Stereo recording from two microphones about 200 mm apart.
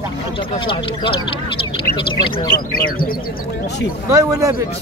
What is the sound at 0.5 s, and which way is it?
Speech, 25° left (ahead or behind).